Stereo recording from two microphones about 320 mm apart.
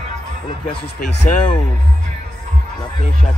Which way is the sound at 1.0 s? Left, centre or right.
Left.